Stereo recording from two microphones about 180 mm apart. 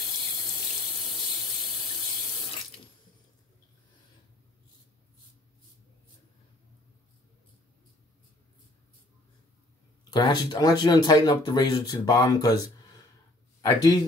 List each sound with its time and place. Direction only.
10.1 s speech: 25° left (ahead or behind)